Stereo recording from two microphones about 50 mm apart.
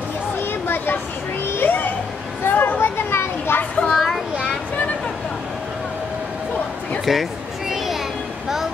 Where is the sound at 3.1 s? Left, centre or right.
Left.